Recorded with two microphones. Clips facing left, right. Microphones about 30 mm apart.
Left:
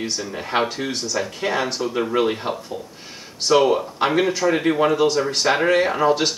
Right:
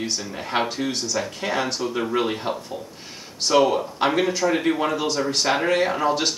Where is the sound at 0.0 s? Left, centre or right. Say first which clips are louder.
Left 2 dB; centre.